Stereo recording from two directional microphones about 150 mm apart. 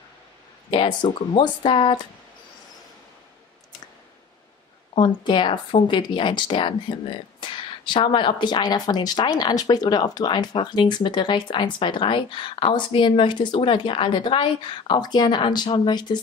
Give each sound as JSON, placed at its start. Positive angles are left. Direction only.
{"t": 0.7, "sound": "speech", "side_deg": 35}
{"t": 4.9, "sound": "speech", "side_deg": 30}